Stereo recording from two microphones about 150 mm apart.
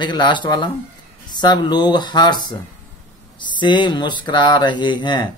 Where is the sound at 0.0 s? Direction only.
30° left (ahead or behind).